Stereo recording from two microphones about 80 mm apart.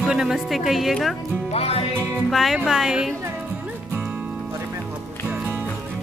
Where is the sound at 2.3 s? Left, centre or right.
Centre.